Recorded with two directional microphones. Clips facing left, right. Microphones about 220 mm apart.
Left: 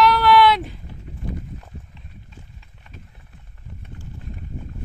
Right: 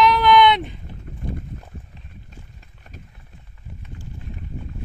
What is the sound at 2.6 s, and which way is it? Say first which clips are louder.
Run: right 1 dB; 40° right (ahead or behind).